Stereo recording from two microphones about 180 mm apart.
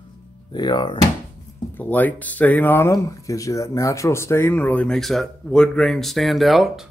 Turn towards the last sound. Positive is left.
turn(degrees=0)  # may be behind; listen again after turning